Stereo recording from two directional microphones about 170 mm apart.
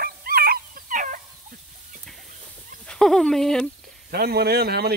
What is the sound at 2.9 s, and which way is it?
Speech, 5° left (ahead or behind).